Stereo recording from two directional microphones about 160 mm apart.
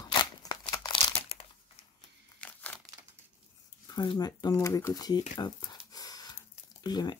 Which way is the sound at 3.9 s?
25° left (ahead or behind).